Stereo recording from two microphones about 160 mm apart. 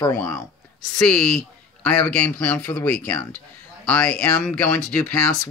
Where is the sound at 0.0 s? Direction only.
15° left (ahead or behind).